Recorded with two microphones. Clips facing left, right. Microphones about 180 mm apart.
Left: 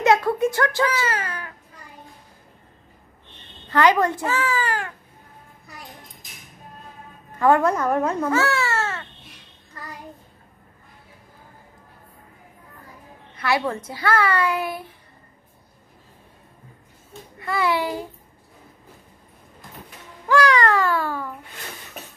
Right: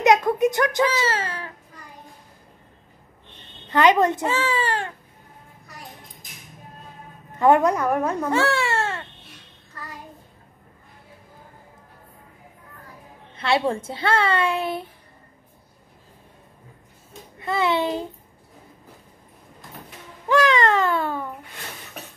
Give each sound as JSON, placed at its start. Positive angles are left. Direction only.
{"t": 0.0, "sound": "speech", "side_deg": -15}
{"t": 3.7, "sound": "a woman's voice", "side_deg": -20}
{"t": 7.3, "sound": "a woman's voice", "side_deg": -20}
{"t": 8.3, "sound": "cat", "side_deg": -30}
{"t": 13.4, "sound": "a woman's voice", "side_deg": -25}
{"t": 17.4, "sound": "a woman's voice", "side_deg": -25}
{"t": 20.2, "sound": "a woman's voice", "side_deg": -20}